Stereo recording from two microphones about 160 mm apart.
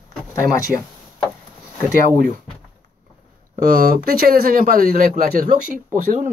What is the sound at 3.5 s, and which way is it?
Speech, 65° right (ahead or behind).